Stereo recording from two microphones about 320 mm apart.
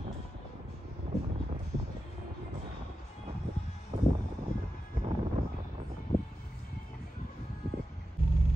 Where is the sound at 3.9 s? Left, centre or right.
Centre.